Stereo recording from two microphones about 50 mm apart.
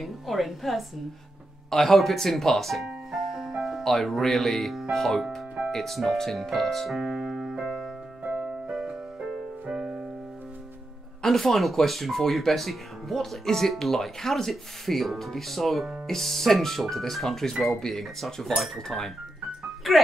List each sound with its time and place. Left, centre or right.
0.0 s speech: centre
1.7 s speech: centre
3.8 s speech: centre
8.2 s music: right
8.6 s music: centre
11.2 s speech: centre